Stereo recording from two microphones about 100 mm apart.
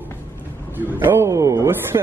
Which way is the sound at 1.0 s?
25° right (ahead or behind).